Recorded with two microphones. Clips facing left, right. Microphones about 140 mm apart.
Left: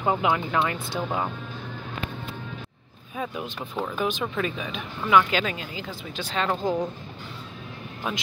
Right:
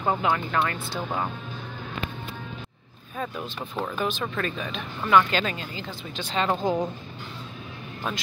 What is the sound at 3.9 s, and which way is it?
Speech, 10° left (ahead or behind).